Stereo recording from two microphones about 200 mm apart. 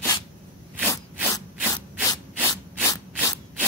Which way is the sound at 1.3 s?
20° left (ahead or behind).